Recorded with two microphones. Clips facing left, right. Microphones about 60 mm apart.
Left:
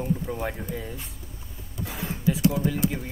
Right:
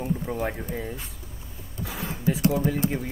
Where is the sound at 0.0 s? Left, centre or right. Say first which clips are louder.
Even; centre.